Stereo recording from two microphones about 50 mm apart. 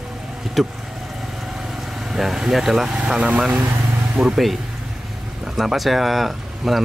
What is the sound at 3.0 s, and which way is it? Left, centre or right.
Speech, centre.